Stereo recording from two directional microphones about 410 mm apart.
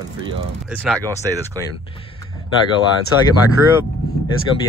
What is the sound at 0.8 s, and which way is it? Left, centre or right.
Speech, centre.